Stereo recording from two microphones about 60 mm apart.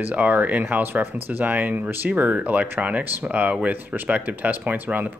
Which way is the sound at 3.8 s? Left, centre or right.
Right.